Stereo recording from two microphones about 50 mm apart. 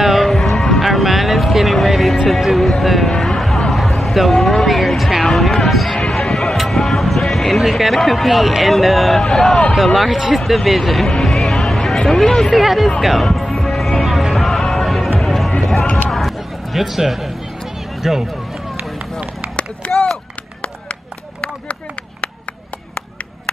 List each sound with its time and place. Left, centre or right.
0.0 s music: centre
3.7 s speech: centre
5.2 s basketball bounce: centre
5.9 s speech: centre
13.0 s music: centre
16.1 s a sound: centre
18.0 s speech: centre
19.9 s run: centre
20.6 s a sound: left